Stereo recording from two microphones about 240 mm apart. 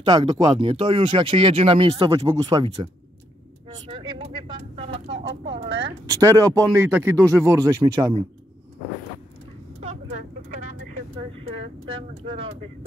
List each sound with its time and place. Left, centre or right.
0.0 s speech: centre
3.6 s vehicle: centre
5.1 s speech: right
6.0 s speech: centre